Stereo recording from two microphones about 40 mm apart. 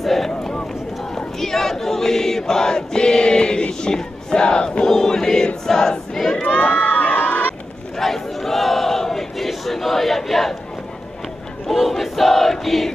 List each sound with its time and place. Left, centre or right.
0.0 s a sound: centre
1.1 s crowd: centre
5.7 s choir: centre
6.4 s crowd: left
6.7 s crowd: left
8.0 s battle cry: centre
11.7 s crowd: centre